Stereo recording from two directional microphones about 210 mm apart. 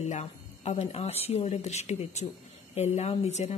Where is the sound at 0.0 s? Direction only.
30° left (ahead or behind).